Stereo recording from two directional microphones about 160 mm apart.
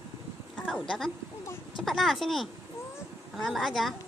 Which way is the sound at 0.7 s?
Centre (ahead or behind).